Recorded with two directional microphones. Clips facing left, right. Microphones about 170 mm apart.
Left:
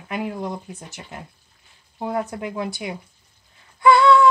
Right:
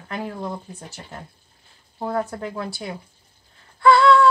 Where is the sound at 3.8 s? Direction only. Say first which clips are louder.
Even; 15° left (ahead or behind).